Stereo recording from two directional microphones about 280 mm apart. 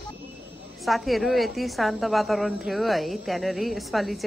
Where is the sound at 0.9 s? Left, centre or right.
Centre.